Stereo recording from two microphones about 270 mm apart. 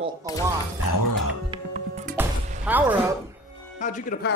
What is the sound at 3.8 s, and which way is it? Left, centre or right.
Speech, left.